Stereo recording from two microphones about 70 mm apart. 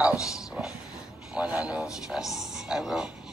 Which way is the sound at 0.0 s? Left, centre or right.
Centre.